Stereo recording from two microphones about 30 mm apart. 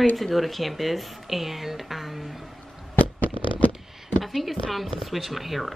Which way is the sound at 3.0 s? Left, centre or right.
Left.